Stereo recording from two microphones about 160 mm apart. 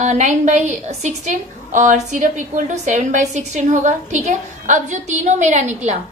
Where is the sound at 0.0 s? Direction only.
50° right (ahead or behind).